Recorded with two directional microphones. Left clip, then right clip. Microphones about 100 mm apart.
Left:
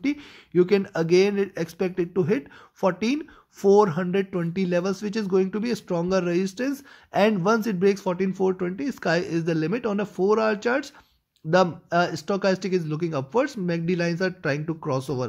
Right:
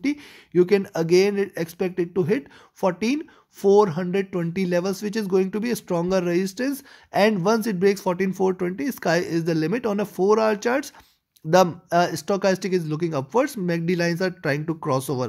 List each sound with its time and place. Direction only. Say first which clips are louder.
0.0 s speech: right 1 dB; 30° right (ahead or behind)
3.6 s speech: right 1 dB; 20° right (ahead or behind); by 15.2 s 35° right (ahead or behind)